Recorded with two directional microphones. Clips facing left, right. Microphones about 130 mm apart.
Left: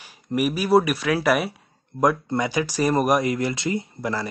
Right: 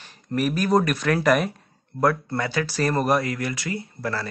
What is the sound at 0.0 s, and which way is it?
Speech, 10° left (ahead or behind).